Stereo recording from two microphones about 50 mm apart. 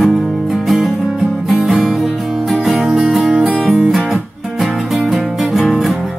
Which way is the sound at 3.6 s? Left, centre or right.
Right.